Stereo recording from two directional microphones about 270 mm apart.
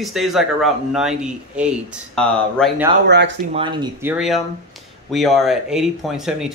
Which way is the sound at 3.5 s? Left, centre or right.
Centre.